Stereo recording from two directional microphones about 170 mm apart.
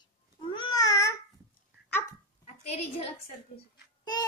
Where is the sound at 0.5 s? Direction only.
20° left (ahead or behind).